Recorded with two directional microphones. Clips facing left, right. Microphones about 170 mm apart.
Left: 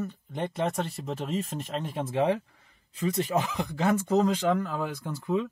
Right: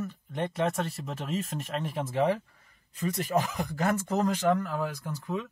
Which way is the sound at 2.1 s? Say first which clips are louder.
Left 1 dB; 25° left (ahead or behind).